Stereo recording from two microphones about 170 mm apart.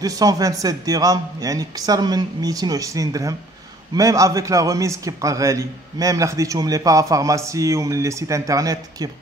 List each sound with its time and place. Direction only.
0.0 s a man's voice: 20° right (ahead or behind)